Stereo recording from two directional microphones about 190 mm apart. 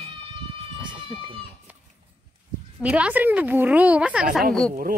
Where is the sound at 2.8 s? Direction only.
5° right (ahead or behind).